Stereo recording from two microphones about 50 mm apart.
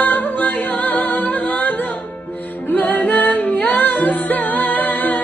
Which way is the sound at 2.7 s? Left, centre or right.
Left.